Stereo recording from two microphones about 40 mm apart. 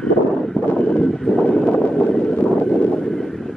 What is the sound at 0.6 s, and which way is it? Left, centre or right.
Vehicle, left.